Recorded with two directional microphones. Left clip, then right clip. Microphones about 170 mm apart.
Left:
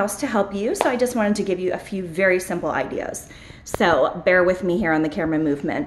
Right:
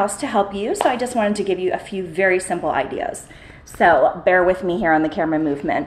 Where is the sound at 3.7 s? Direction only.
30° left (ahead or behind).